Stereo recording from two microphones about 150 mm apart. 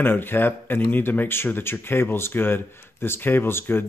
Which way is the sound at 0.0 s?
15° left (ahead or behind).